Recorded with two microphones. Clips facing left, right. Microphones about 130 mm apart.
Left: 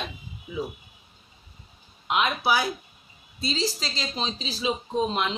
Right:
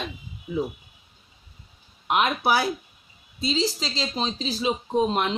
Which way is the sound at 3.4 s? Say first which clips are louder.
Right 3 dB; 25° right (ahead or behind).